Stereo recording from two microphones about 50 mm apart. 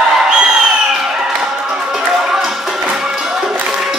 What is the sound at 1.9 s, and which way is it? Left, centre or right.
Music, centre.